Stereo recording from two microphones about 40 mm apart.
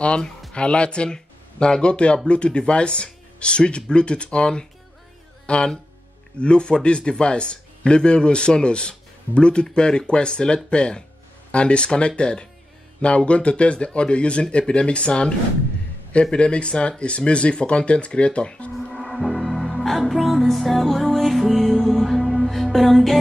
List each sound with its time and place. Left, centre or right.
0.5 s a man's voice: left
18.9 s music: centre